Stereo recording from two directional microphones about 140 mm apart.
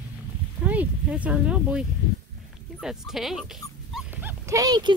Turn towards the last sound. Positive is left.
turn(degrees=-30)  # may be behind; listen again after turning